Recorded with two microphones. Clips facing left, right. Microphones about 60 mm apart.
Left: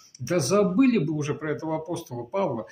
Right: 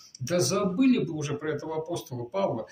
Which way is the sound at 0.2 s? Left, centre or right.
Left.